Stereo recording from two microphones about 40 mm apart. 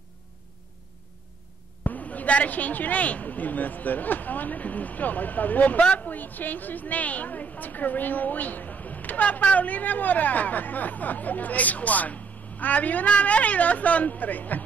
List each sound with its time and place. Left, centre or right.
1.9 s a woman's voice: left
6.0 s a woman's voice: left